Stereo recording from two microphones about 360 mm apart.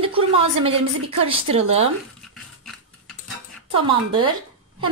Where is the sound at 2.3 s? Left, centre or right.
Centre.